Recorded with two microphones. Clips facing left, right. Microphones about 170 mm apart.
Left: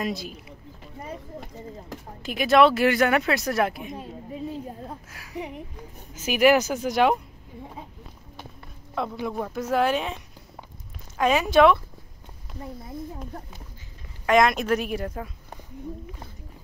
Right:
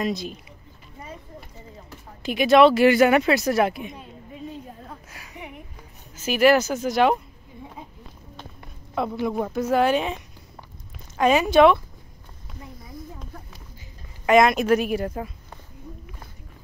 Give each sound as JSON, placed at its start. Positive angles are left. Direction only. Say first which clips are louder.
{"t": 0.0, "sound": "speech", "louder": "right 3 dB", "side_deg": 5}
{"t": 2.2, "sound": "speech", "louder": "right 3 dB", "side_deg": 0}
{"t": 3.9, "sound": "a sound", "louder": "left 5 dB", "side_deg": 35}
{"t": 5.1, "sound": "a sound", "louder": "left 6 dB", "side_deg": 0}
{"t": 6.1, "sound": "speech", "louder": "right 1 dB", "side_deg": 10}
{"t": 9.2, "sound": "speech", "louder": "right 4 dB", "side_deg": -5}
{"t": 14.2, "sound": "speech", "louder": "right 3 dB", "side_deg": -5}